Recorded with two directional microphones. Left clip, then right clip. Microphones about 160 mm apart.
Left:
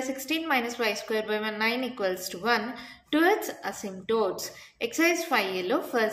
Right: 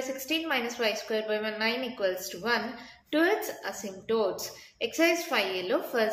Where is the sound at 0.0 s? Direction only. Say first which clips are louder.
Left 1 dB; 30° left (ahead or behind).